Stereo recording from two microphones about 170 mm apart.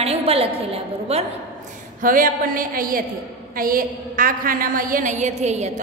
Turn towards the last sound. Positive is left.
turn(degrees=-40)  # may be behind; listen again after turning